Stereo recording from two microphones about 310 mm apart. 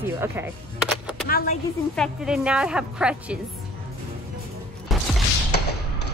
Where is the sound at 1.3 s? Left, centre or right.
Left.